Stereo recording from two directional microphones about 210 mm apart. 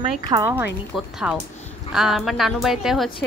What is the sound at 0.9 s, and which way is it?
Speech, centre (ahead or behind).